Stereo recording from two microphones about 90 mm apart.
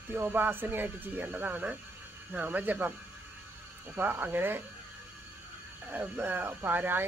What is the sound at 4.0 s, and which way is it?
Speech, 20° right (ahead or behind).